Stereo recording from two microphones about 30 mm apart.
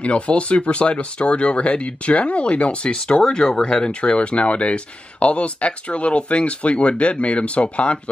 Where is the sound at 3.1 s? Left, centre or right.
Left.